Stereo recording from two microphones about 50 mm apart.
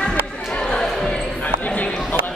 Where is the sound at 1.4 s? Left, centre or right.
Left.